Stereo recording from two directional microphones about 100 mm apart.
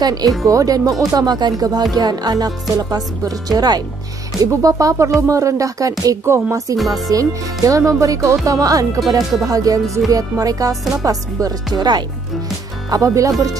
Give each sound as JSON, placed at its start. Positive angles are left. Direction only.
{"t": 0.0, "sound": "speech", "side_deg": -40}